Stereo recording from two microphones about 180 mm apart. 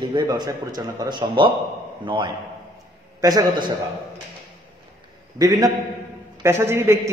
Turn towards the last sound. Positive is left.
turn(degrees=-15)  # may be behind; listen again after turning